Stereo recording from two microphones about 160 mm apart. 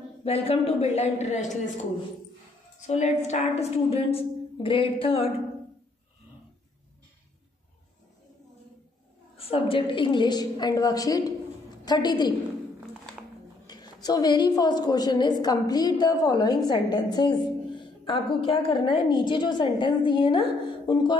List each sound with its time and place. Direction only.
0.2 s a woman's voice: 35° left (ahead or behind)
2.9 s a woman's voice: 45° left (ahead or behind)
9.4 s a woman's voice: 35° left (ahead or behind)
13.7 s a sound: 25° left (ahead or behind)
14.0 s a woman's voice: 25° left (ahead or behind)